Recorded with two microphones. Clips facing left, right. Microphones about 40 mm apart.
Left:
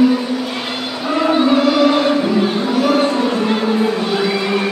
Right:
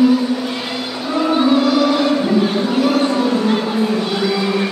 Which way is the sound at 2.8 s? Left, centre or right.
Left.